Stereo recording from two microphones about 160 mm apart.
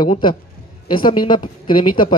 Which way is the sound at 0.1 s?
30° left (ahead or behind).